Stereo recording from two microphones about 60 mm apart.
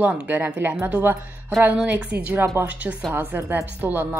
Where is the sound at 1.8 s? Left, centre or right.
Right.